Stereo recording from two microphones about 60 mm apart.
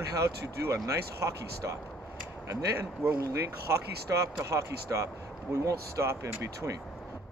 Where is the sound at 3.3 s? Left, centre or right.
Right.